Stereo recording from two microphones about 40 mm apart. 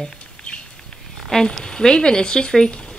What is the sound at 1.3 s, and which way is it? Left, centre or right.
Speech, centre.